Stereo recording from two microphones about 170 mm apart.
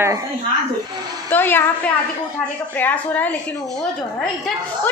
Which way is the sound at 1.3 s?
10° left (ahead or behind).